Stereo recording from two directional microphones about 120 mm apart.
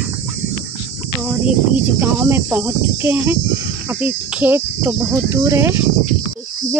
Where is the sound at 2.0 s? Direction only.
20° right (ahead or behind).